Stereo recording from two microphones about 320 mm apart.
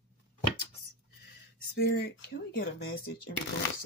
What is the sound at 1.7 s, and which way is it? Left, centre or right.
Speech, left.